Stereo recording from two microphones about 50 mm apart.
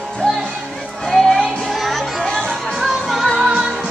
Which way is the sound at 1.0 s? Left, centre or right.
Centre.